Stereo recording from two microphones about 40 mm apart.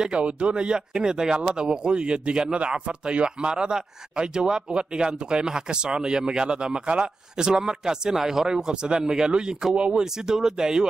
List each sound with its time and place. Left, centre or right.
0.2 s speech: right
10.2 s speech: centre